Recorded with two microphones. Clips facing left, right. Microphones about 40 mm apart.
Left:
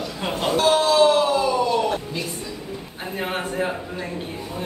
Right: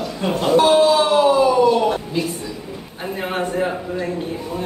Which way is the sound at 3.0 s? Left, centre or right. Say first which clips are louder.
Right 4 dB; centre.